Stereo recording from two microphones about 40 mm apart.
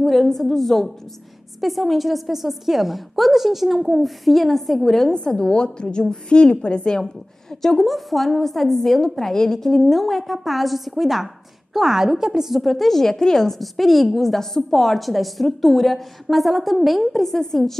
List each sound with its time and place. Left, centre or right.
0.0 s a woman's voice: centre
5.1 s a woman's voice: left
7.6 s a woman's voice: centre
9.7 s a woman's voice: centre
13.6 s a woman's voice: centre